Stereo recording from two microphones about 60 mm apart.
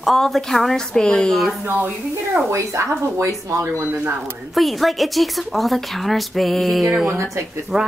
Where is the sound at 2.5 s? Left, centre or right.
Right.